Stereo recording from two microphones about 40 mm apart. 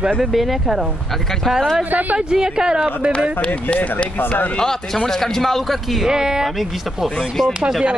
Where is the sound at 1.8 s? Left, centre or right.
Right.